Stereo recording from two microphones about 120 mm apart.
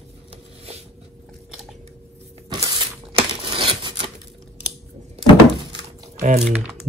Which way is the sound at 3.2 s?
50° right (ahead or behind).